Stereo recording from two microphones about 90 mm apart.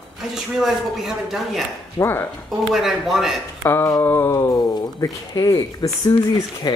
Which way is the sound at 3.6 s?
25° left (ahead or behind).